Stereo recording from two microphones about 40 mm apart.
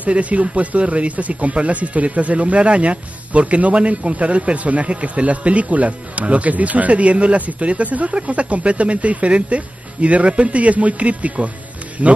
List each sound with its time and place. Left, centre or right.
0.0 s speech: right